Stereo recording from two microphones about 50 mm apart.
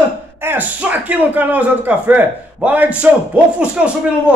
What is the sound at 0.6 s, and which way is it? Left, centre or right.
Speech, right.